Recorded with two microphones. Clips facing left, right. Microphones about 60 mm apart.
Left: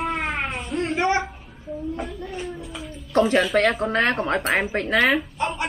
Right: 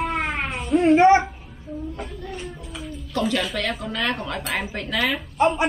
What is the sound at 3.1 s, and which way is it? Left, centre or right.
Speech, left.